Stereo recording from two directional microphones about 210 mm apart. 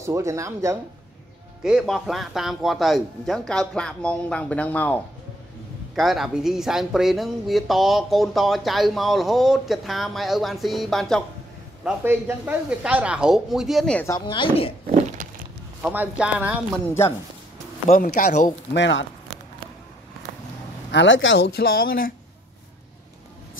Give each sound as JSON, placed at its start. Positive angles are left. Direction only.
{"t": 0.0, "sound": "speech", "side_deg": -15}
{"t": 1.6, "sound": "speech", "side_deg": -5}
{"t": 11.8, "sound": "speech", "side_deg": -10}
{"t": 14.1, "sound": "a woman's voice", "side_deg": 20}
{"t": 14.9, "sound": "a sound", "side_deg": -30}
{"t": 15.8, "sound": "speech", "side_deg": -5}
{"t": 16.7, "sound": "a woman's voice", "side_deg": 10}
{"t": 17.8, "sound": "speech", "side_deg": 35}
{"t": 18.8, "sound": "speech", "side_deg": 60}
{"t": 20.9, "sound": "speech", "side_deg": 60}